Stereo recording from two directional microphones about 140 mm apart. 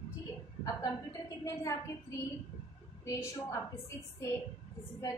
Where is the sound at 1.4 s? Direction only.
25° left (ahead or behind).